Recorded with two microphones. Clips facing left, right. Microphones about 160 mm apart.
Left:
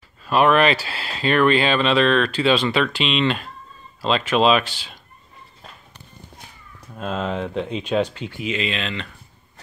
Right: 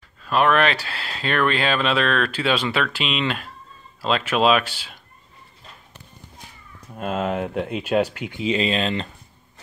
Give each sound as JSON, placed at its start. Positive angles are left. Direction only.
{"t": 0.2, "sound": "speech", "side_deg": 5}
{"t": 7.0, "sound": "speech", "side_deg": -10}
{"t": 8.4, "sound": "speech", "side_deg": -35}